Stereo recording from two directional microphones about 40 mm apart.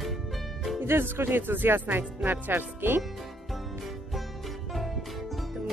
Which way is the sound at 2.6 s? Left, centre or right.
Right.